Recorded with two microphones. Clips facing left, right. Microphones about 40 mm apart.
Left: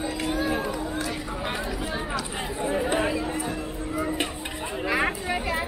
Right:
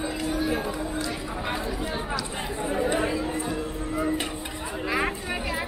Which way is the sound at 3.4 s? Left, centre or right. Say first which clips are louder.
Right 1 dB; centre.